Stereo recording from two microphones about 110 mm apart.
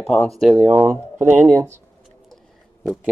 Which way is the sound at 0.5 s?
20° right (ahead or behind).